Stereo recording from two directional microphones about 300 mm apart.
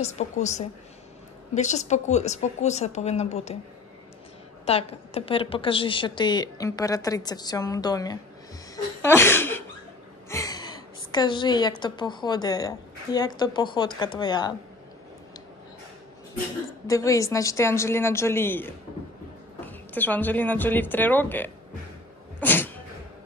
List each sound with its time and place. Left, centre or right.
0.0 s speech: left
4.6 s a woman's voice: centre
9.0 s a sound: centre
10.3 s a woman's voice: centre
16.8 s a woman's voice: centre
22.4 s sneeze: centre